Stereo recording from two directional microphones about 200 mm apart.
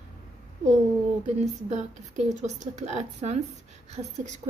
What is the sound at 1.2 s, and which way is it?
A woman's voice, 35° right (ahead or behind).